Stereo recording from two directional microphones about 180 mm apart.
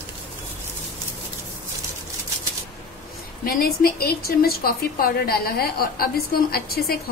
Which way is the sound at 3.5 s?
55° left (ahead or behind).